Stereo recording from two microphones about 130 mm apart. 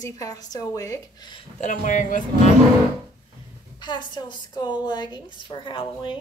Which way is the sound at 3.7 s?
35° left (ahead or behind).